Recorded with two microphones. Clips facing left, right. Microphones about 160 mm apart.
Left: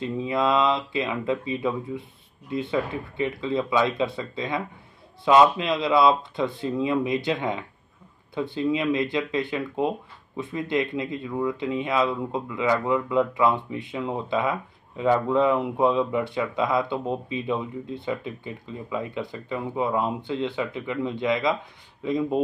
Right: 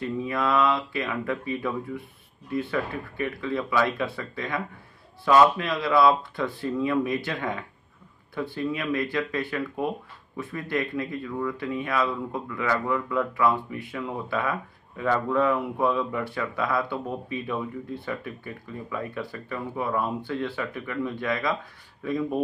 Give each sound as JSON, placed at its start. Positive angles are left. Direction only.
{"t": 0.0, "sound": "speech", "side_deg": 20}